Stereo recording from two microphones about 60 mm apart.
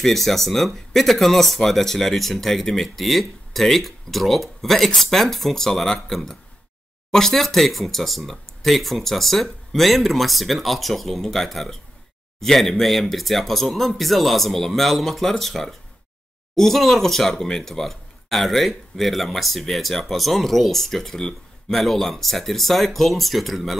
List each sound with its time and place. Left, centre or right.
0.0 s speech: centre